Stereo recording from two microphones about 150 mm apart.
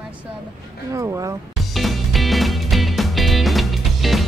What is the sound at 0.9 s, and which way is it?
Speech, 20° right (ahead or behind).